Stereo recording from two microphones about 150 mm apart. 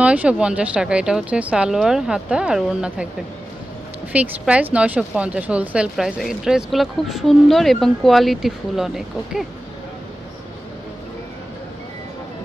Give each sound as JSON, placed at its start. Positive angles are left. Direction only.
{"t": 0.0, "sound": "speech", "side_deg": -10}
{"t": 4.1, "sound": "speech", "side_deg": -10}